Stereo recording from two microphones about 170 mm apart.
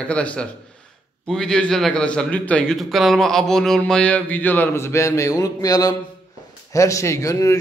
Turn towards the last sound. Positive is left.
turn(degrees=20)  # may be behind; listen again after turning